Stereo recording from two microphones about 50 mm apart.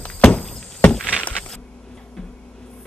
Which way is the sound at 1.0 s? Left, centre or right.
Left.